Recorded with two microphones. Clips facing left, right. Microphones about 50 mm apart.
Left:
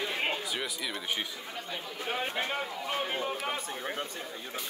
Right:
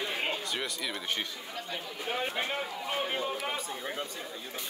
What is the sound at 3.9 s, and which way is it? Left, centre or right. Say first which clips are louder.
Speech: left 1 dB; centre.